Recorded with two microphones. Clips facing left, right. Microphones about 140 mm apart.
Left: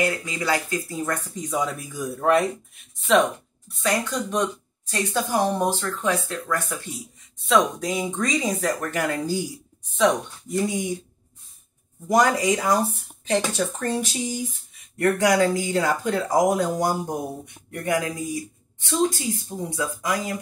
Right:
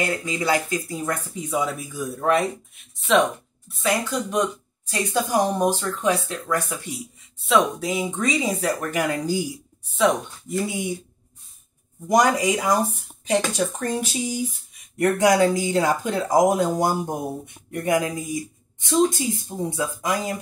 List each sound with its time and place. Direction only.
0.2 s speech: 20° right (ahead or behind); by 2.0 s 5° right (ahead or behind)
3.6 s speech: centre (ahead or behind)
10.7 s speech: 5° right (ahead or behind)
12.1 s speech: 15° right (ahead or behind)